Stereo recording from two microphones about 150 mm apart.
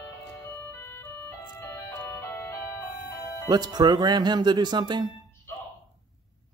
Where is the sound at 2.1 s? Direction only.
20° left (ahead or behind).